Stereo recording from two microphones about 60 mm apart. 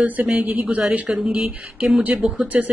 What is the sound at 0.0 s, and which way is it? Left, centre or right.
A man's voice, right.